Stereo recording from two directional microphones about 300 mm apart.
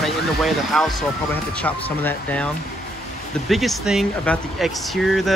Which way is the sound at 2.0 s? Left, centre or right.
Centre.